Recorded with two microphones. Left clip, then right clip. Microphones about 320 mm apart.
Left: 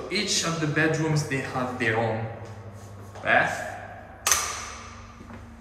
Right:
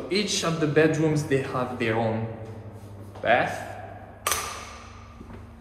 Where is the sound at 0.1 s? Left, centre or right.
Centre.